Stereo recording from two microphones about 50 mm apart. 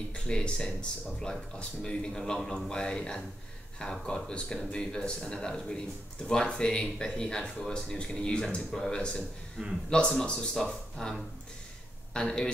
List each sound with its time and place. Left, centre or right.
0.1 s speech: centre